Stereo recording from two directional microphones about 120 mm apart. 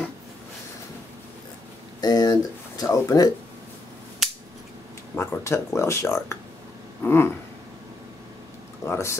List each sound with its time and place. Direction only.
2.0 s a sound: 35° left (ahead or behind)
2.8 s speech: 30° left (ahead or behind)
4.2 s scissors: centre (ahead or behind)
5.1 s speech: 20° left (ahead or behind)
7.0 s a sound: 20° left (ahead or behind)
8.8 s speech: 25° left (ahead or behind)